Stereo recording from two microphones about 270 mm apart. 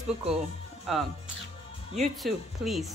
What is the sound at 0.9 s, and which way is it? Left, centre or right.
Speech, centre.